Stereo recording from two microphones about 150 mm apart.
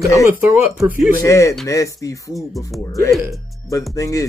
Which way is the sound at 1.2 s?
20° left (ahead or behind).